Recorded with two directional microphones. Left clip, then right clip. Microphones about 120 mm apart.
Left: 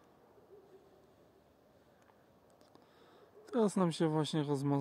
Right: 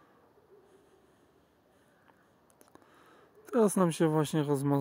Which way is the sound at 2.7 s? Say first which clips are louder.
Right 5 dB; 35° right (ahead or behind).